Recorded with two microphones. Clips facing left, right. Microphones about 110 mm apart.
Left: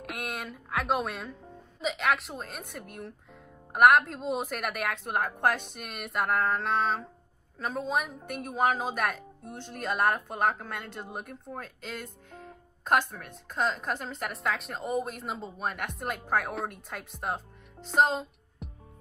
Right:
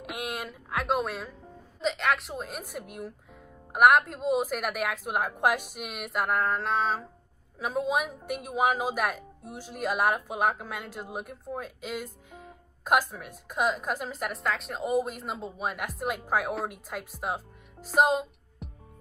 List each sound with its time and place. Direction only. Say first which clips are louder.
0.0 s a woman's voice: right 2 dB; centre (ahead or behind)